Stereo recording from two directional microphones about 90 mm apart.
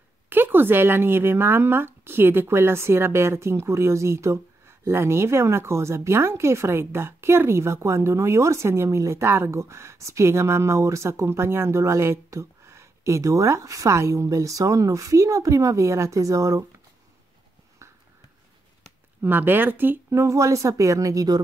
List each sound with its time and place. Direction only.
0.3 s speech: 25° right (ahead or behind)
19.2 s speech: 20° right (ahead or behind); by 21.4 s 40° right (ahead or behind)